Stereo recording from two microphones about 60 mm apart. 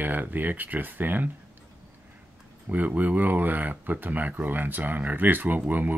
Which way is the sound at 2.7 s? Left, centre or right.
Right.